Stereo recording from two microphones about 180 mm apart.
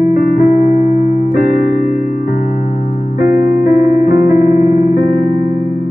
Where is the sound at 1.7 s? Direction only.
40° left (ahead or behind).